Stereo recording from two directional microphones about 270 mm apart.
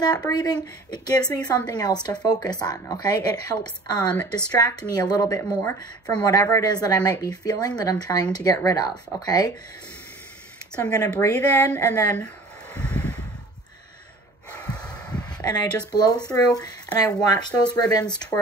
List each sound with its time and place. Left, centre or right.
0.0 s a woman's voice: centre
10.8 s a woman's voice: centre
12.8 s a sound: centre
14.5 s snort: centre
15.2 s a sound: centre
15.9 s a woman's voice: centre